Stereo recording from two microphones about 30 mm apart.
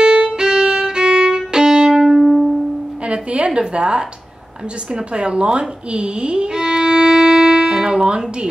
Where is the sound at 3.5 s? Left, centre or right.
Right.